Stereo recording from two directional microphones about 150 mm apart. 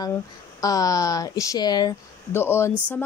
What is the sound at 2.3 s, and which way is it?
Speech, 15° left (ahead or behind).